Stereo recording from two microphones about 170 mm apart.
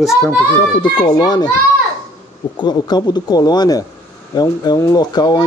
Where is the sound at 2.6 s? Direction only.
25° left (ahead or behind).